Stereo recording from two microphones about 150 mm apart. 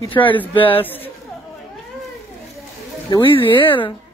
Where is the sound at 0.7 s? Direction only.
15° left (ahead or behind).